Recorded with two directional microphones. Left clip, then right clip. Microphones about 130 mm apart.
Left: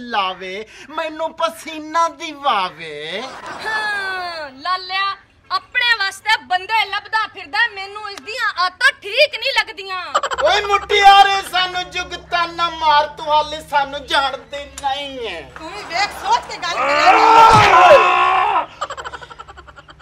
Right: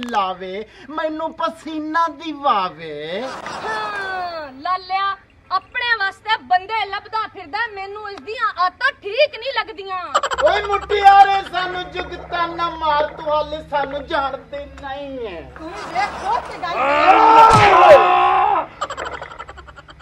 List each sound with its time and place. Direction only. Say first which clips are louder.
0.1 s speech: left 1 dB; 10° left (ahead or behind)
10.1 s speech: even; centre (ahead or behind)
10.4 s speech: left 3 dB; 10° left (ahead or behind)
16.7 s speech: left 1 dB; 10° right (ahead or behind)
17.2 s speech: even; 20° left (ahead or behind)
17.6 s a sound: even; 5° left (ahead or behind)